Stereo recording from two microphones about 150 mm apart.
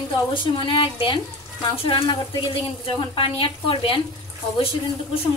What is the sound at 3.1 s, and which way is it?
Speech, 35° left (ahead or behind).